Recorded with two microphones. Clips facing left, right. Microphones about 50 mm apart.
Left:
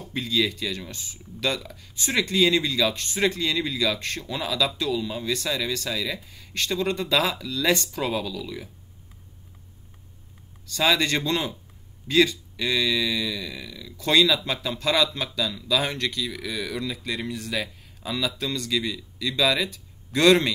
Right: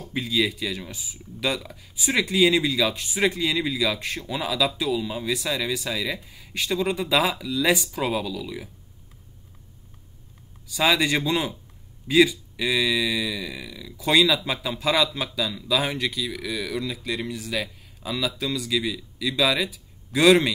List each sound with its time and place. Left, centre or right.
0.1 s speech: centre
10.7 s speech: centre